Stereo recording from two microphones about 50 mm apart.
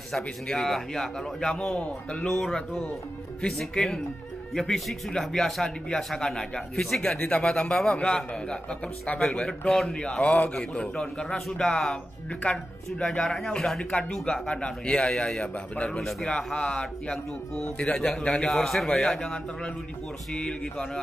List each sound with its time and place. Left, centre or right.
0.1 s a man's voice: centre; by 2.2 s left
2.2 s a man's voice: centre
7.2 s a man's voice: left
10.6 s a man's voice: centre
12.4 s a man's voice: left
13.0 s a man's voice: centre
16.0 s speech: centre
16.5 s a man's voice: centre